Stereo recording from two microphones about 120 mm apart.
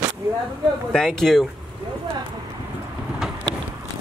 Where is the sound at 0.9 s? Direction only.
5° left (ahead or behind).